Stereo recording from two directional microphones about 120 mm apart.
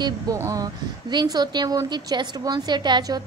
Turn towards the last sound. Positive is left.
turn(degrees=-35)  # may be behind; listen again after turning